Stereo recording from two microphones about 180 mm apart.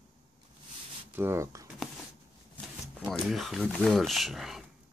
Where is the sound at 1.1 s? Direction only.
15° right (ahead or behind).